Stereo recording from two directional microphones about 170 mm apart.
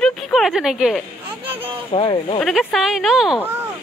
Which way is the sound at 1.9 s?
30° left (ahead or behind).